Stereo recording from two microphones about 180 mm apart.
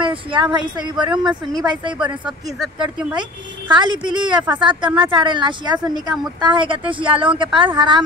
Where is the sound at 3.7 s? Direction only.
25° right (ahead or behind).